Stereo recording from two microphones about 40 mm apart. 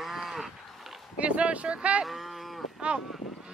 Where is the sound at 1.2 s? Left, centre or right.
Right.